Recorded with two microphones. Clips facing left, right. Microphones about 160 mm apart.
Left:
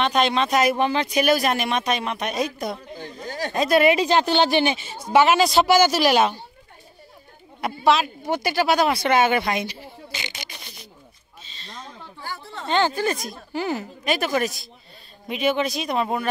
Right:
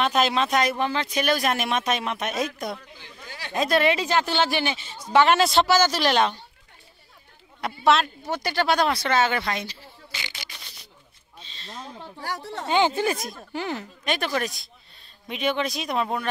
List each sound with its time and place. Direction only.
0.0 s speech: 5° right (ahead or behind)
0.7 s speech: 15° left (ahead or behind); by 2.8 s centre (ahead or behind)
2.9 s a sound: 45° left (ahead or behind)
3.5 s speech: 5° left (ahead or behind)
5.1 s speech: 5° left (ahead or behind)
7.6 s speech: 5° left (ahead or behind); by 10.5 s 20° left (ahead or behind)
11.4 s a sound: centre (ahead or behind)
12.6 s speech: 15° right (ahead or behind)
13.5 s speech: 5° left (ahead or behind)